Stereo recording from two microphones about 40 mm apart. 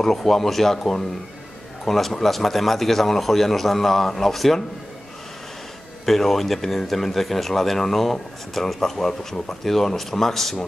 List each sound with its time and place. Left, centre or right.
0.0 s a man's voice: centre
6.0 s speech: centre